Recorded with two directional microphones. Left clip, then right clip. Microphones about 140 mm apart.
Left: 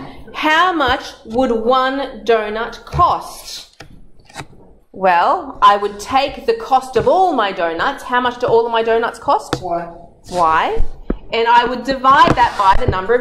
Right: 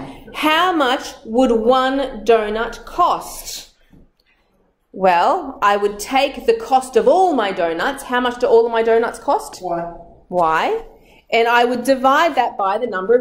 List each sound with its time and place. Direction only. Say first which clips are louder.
0.3 s a woman's voice: left 2 dB; 25° right (ahead or behind)
5.0 s a woman's voice: left 1 dB; 25° right (ahead or behind)
10.4 s a woman's voice: left 3 dB; 25° right (ahead or behind)